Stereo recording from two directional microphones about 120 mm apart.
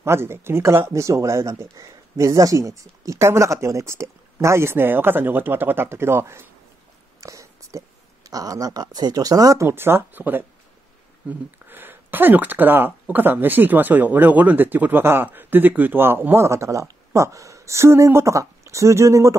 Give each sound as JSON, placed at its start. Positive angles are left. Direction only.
{"t": 0.0, "sound": "speech", "side_deg": -20}
{"t": 7.2, "sound": "whispering", "side_deg": -25}
{"t": 8.3, "sound": "speech", "side_deg": -30}